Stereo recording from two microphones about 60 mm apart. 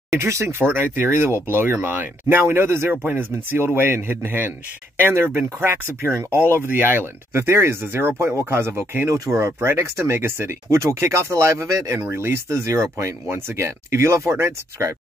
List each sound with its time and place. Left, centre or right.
0.1 s speech: right
0.7 s speech: right
11.6 s speech: right
12.0 s speech: right
12.9 s speech: right